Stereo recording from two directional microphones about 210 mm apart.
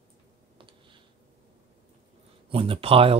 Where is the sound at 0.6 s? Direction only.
25° right (ahead or behind).